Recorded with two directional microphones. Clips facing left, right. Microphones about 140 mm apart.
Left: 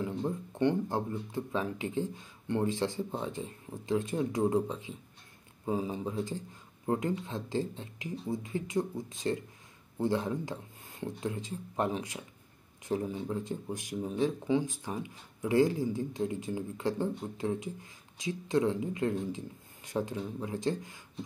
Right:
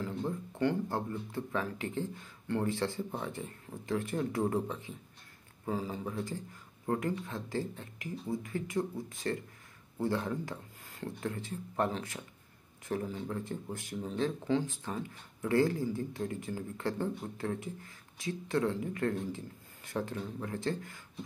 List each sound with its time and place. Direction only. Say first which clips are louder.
0.0 s speech: left 2 dB; 20° left (ahead or behind)